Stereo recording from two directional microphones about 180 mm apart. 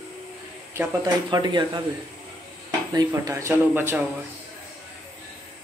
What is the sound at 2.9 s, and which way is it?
Speech, 20° right (ahead or behind).